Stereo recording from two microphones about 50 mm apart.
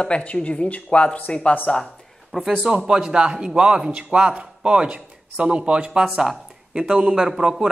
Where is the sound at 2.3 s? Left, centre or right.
Centre.